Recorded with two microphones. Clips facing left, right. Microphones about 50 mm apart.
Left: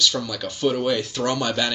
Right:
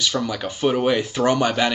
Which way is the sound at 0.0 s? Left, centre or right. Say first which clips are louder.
Right 1 dB; right.